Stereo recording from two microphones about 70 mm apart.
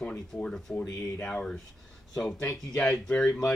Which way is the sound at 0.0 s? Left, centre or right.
Centre.